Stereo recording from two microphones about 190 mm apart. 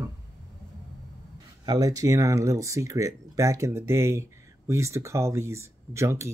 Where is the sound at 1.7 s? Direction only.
20° right (ahead or behind).